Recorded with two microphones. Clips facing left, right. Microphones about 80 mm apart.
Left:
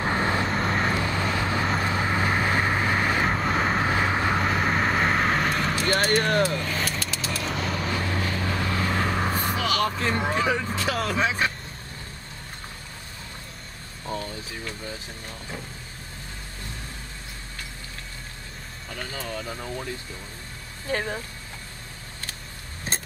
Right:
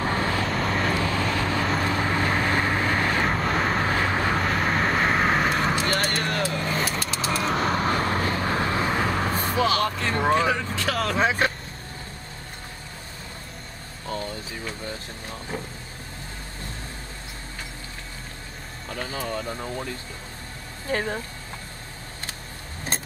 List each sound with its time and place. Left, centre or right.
0.0 s vehicle: left
0.5 s vehicle: centre
0.9 s vehicle: centre
5.9 s music: centre
6.6 s vehicle: centre
7.2 s vehicle: right
8.9 s vehicle: centre
9.6 s a sound: right
9.8 s a sound: centre
10.3 s speech: centre
10.7 s vehicle: centre
11.1 s speech: right
18.9 s speech: centre
20.9 s speech: centre